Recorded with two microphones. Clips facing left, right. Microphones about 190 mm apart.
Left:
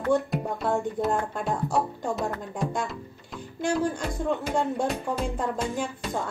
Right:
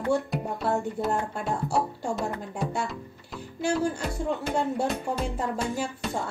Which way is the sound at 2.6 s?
5° right (ahead or behind).